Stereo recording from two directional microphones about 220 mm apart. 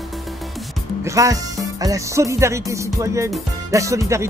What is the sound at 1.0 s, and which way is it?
Speech, 15° right (ahead or behind).